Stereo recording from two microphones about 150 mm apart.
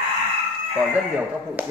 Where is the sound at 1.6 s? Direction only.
10° right (ahead or behind).